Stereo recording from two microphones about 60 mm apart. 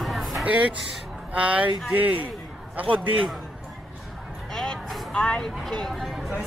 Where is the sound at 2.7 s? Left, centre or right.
Right.